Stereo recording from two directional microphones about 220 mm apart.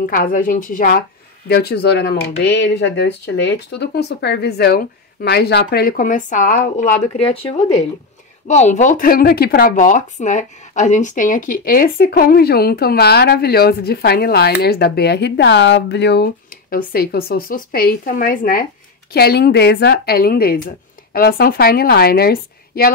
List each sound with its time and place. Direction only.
0.0 s speech: 40° left (ahead or behind)